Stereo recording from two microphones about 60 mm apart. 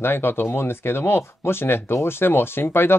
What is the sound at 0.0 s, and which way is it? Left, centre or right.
Speech, left.